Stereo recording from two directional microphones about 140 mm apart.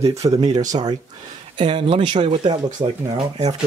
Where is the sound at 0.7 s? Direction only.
30° right (ahead or behind).